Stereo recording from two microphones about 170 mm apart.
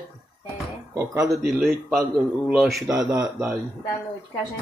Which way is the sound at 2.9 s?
20° right (ahead or behind).